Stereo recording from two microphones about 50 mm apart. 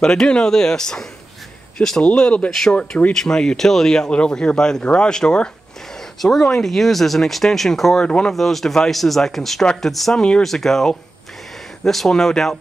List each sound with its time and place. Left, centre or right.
0.0 s speech: centre
8.0 s speech: centre
8.3 s speech: centre
10.1 s speech: centre
10.4 s speech: centre